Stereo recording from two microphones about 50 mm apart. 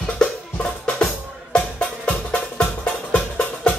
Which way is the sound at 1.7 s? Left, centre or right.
Left.